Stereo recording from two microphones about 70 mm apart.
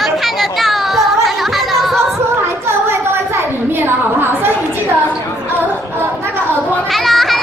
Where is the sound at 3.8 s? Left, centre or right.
Right.